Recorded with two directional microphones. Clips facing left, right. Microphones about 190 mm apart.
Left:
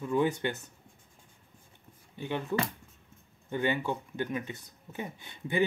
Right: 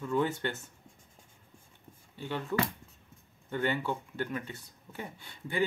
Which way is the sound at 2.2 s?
15° left (ahead or behind).